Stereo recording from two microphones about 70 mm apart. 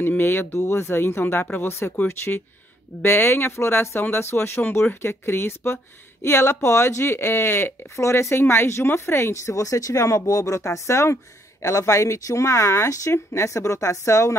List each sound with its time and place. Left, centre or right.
0.0 s speech: left